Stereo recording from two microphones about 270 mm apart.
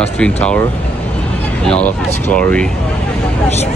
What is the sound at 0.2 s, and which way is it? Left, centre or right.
Speech, centre.